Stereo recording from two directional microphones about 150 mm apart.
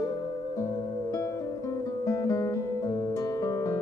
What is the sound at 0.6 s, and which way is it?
Music, 25° left (ahead or behind).